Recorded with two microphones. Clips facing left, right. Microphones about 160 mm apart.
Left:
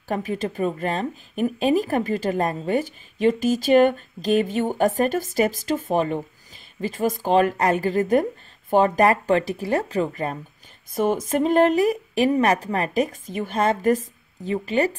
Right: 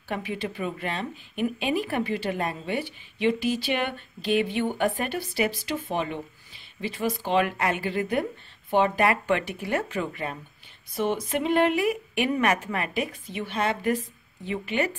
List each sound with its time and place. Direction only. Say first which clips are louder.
0.1 s a woman's voice: left 5 dB; 45° left (ahead or behind)